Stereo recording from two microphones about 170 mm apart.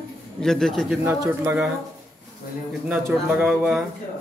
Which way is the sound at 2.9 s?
10° right (ahead or behind).